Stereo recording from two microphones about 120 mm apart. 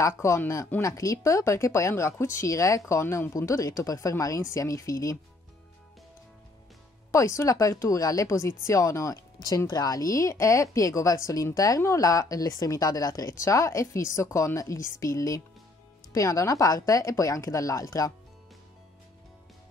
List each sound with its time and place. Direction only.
0.0 s speech: 25° left (ahead or behind)
7.1 s speech: 25° left (ahead or behind)